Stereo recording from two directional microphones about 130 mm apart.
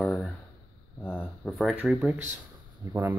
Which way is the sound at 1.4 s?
5° left (ahead or behind).